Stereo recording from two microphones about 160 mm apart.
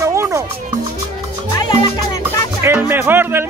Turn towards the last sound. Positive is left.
turn(degrees=-15)  # may be behind; listen again after turning